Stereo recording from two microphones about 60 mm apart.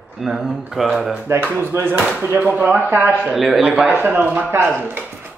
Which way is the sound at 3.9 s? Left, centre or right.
Right.